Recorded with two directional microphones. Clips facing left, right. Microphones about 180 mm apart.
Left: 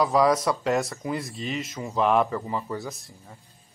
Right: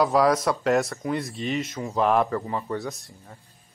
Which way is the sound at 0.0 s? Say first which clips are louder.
Right 1 dB; centre (ahead or behind).